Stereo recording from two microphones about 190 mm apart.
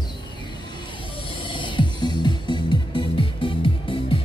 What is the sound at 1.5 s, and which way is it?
Music, 25° left (ahead or behind).